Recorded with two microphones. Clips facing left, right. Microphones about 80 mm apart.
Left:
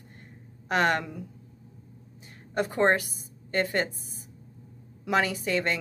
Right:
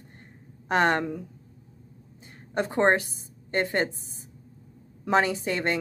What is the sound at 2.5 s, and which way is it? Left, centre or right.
A woman's voice, right.